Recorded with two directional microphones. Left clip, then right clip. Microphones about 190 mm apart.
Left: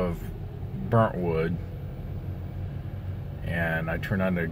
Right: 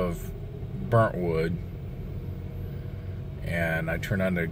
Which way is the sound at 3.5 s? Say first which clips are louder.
Even; 10° right (ahead or behind).